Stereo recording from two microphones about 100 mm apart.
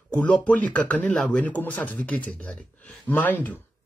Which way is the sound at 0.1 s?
15° left (ahead or behind).